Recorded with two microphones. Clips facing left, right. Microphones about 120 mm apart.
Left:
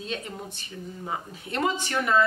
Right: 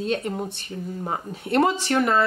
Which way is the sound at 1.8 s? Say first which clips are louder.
Right 4 dB; 45° right (ahead or behind).